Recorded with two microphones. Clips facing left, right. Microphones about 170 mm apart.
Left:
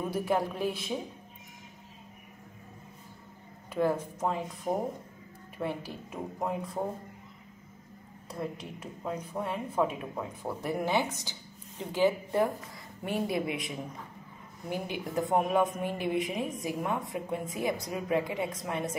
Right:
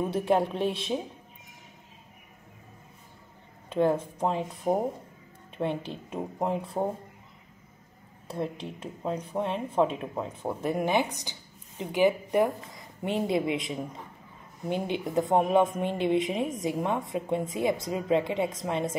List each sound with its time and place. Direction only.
0.0 s speech: 25° right (ahead or behind)
3.7 s speech: 25° right (ahead or behind)
8.3 s speech: 25° right (ahead or behind)